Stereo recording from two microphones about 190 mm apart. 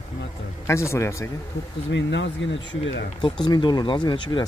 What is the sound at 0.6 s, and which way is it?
Speech, 15° left (ahead or behind).